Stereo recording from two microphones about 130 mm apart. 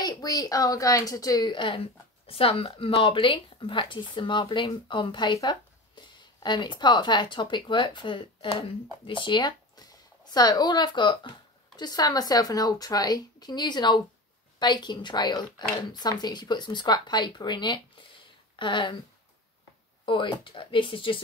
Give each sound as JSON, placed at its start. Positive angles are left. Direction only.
{"t": 0.0, "sound": "a woman's voice", "side_deg": 30}
{"t": 20.1, "sound": "speech", "side_deg": 40}